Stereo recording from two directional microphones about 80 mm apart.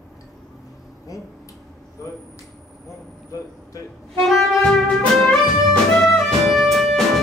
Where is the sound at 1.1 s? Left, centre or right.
Left.